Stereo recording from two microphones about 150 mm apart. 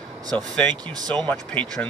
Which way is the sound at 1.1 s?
10° left (ahead or behind).